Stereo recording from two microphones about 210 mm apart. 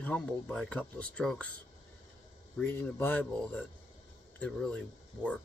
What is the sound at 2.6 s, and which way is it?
Speech, 10° left (ahead or behind).